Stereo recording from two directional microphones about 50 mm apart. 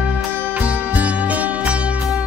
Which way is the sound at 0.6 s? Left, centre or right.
Right.